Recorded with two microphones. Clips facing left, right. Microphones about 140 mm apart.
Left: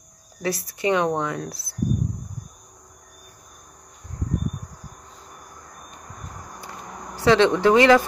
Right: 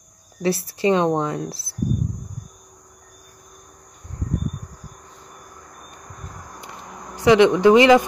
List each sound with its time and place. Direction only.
0.4 s speech: 30° right (ahead or behind)
7.2 s speech: 15° right (ahead or behind)